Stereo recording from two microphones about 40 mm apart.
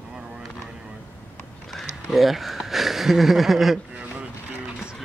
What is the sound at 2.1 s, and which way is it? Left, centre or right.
Speech, centre.